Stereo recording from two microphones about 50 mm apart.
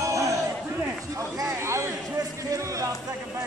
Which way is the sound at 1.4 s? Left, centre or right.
Right.